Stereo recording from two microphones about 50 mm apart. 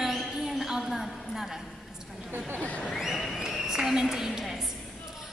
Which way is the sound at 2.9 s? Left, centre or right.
Centre.